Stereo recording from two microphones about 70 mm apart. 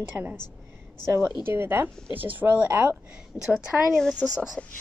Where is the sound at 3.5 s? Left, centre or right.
Centre.